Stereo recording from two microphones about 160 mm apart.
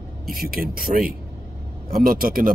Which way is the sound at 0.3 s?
65° right (ahead or behind).